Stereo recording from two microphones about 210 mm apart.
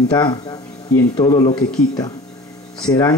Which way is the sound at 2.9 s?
20° left (ahead or behind).